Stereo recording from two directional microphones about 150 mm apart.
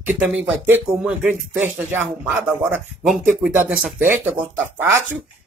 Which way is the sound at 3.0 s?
Centre (ahead or behind).